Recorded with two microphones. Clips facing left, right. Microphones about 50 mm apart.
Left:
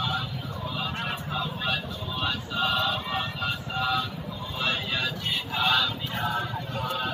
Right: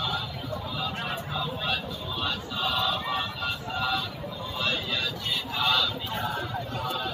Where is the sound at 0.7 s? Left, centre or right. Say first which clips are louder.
Left 2 dB; centre.